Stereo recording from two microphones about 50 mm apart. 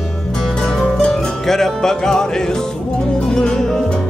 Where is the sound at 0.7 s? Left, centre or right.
Centre.